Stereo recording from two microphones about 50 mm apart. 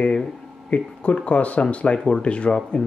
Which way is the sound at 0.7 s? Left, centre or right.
Left.